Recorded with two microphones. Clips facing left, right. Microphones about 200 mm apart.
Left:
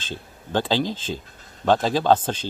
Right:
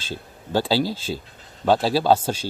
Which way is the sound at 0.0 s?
10° right (ahead or behind).